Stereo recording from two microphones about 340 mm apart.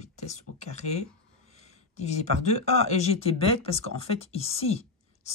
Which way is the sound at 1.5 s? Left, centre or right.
Centre.